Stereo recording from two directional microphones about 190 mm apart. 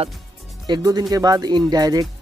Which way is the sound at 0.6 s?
20° right (ahead or behind).